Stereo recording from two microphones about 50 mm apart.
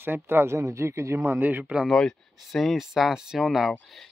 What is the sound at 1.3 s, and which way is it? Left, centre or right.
Speech, right.